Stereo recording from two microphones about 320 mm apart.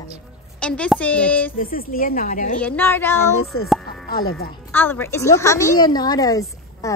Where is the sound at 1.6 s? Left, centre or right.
Left.